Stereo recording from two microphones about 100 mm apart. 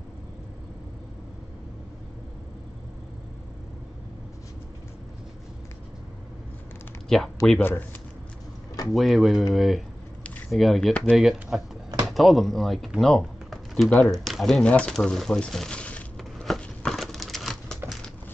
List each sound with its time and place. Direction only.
7.1 s speech: 5° left (ahead or behind)
7.5 s speech: 20° left (ahead or behind)
8.9 s speech: centre (ahead or behind)
10.9 s speech: 10° left (ahead or behind)
11.1 s speech: centre (ahead or behind)
14.7 s crumpling: 10° left (ahead or behind)